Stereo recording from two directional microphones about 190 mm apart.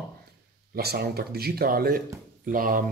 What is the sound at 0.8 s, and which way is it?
Speech, 55° right (ahead or behind).